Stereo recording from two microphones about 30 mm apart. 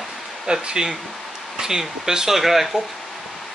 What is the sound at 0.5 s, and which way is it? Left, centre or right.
Speech, right.